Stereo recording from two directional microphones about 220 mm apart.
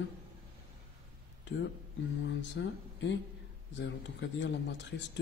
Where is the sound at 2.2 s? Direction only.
55° left (ahead or behind).